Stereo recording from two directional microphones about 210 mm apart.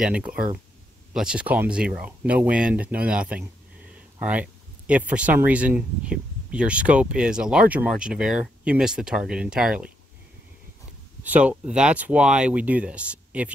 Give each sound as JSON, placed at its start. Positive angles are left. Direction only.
{"t": 0.0, "sound": "speech", "side_deg": -5}
{"t": 11.2, "sound": "speech", "side_deg": -5}